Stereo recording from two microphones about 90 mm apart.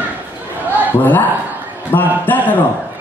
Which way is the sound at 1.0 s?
20° left (ahead or behind).